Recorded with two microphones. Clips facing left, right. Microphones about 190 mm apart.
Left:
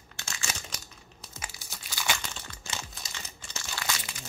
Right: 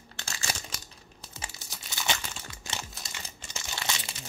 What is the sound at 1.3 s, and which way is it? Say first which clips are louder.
Crumpling: right 1 dB; 25° right (ahead or behind).